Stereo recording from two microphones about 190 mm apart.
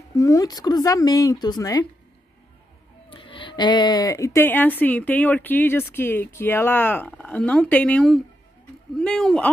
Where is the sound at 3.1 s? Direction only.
25° left (ahead or behind).